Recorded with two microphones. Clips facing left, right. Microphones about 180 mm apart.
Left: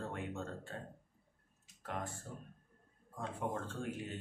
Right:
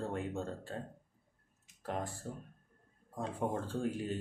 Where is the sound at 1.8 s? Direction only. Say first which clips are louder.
Right 4 dB; 35° right (ahead or behind).